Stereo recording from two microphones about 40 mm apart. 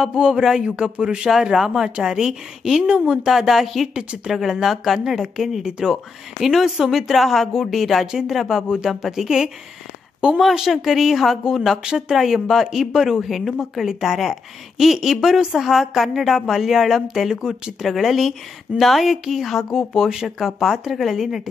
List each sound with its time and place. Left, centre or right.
0.0 s a man's voice: centre
3.3 s speech: centre
8.6 s speech: centre
17.8 s speech: centre